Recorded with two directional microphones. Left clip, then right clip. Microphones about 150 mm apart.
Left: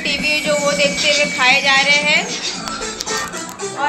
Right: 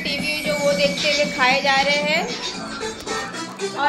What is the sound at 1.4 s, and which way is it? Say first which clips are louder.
Speech: left 4 dB; 35° right (ahead or behind).